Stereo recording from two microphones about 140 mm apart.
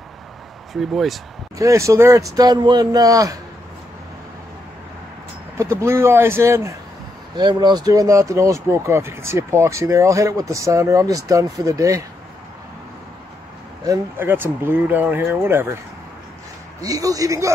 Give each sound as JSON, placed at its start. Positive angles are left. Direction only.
{"t": 0.7, "sound": "speech", "side_deg": 0}
{"t": 1.6, "sound": "speech", "side_deg": -20}
{"t": 5.6, "sound": "speech", "side_deg": -20}
{"t": 7.3, "sound": "speech", "side_deg": -30}
{"t": 14.1, "sound": "speech", "side_deg": -15}
{"t": 16.8, "sound": "speech", "side_deg": -25}